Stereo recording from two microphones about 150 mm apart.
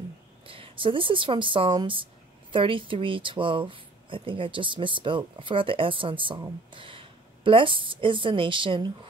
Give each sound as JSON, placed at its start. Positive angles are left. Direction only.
{"t": 0.5, "sound": "a woman's voice", "side_deg": -35}